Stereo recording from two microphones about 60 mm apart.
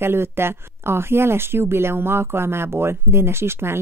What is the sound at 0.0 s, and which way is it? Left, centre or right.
Speech, right.